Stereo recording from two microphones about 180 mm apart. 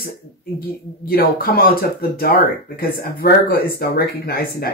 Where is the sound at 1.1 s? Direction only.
55° left (ahead or behind).